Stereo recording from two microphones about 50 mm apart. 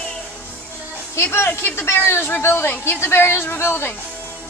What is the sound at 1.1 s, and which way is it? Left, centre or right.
A woman's voice, left.